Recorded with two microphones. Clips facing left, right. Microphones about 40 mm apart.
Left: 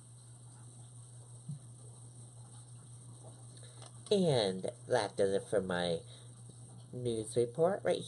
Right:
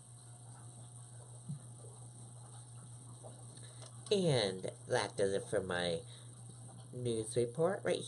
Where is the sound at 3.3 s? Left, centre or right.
Centre.